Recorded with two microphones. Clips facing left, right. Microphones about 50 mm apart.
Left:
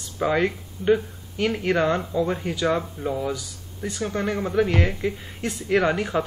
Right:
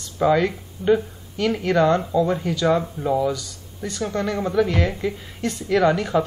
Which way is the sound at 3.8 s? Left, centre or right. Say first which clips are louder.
Right 2 dB; centre.